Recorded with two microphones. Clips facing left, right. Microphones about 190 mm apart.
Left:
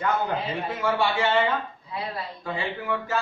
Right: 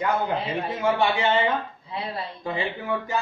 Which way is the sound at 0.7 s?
20° right (ahead or behind).